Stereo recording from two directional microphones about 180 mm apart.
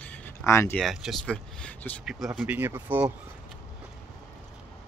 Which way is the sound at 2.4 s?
10° right (ahead or behind).